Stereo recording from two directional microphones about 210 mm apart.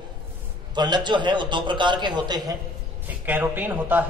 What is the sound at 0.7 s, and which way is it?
A man's voice, 20° right (ahead or behind).